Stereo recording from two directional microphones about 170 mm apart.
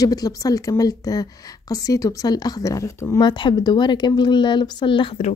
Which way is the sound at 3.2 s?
25° left (ahead or behind).